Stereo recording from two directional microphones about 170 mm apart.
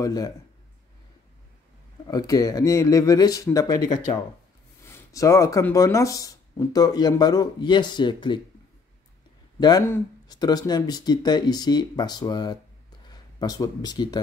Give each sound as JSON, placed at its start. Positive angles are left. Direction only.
{"t": 0.0, "sound": "speech", "side_deg": 20}
{"t": 2.0, "sound": "speech", "side_deg": 20}
{"t": 4.8, "sound": "speech", "side_deg": 15}
{"t": 9.6, "sound": "speech", "side_deg": 20}